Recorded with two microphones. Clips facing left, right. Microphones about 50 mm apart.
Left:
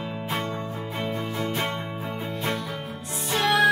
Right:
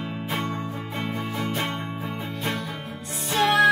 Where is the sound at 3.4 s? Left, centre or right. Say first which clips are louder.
Right 2 dB; centre.